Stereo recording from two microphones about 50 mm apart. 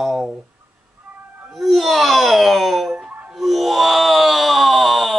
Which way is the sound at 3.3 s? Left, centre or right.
Centre.